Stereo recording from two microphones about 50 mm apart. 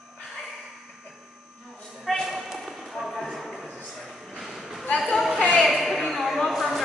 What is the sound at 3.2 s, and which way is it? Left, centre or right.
Clip-clop, centre.